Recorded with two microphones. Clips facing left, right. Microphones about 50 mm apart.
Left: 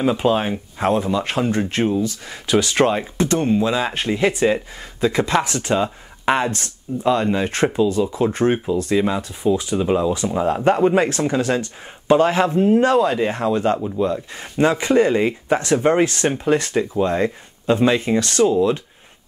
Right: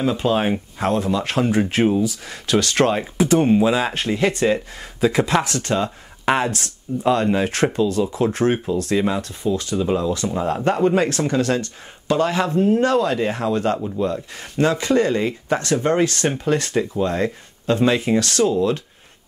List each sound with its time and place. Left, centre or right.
0.0 s speech: centre
2.2 s speech: centre
9.4 s speech: centre
12.1 s speech: centre